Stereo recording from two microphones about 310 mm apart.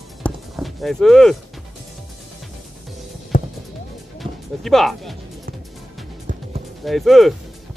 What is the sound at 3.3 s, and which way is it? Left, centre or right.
Music, left.